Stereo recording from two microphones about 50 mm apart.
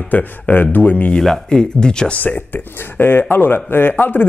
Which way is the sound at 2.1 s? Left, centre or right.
Left.